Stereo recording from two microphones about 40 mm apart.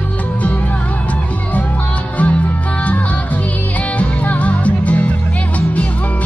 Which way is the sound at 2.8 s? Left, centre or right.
Left.